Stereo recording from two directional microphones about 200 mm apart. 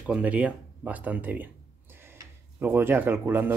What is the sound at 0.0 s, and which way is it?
Speech, 5° right (ahead or behind).